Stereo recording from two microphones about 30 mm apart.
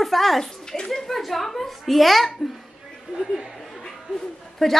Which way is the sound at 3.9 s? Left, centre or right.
Centre.